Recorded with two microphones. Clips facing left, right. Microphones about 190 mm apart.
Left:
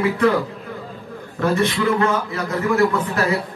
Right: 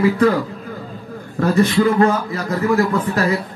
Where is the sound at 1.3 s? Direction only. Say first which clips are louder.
Right 4 dB; 35° right (ahead or behind).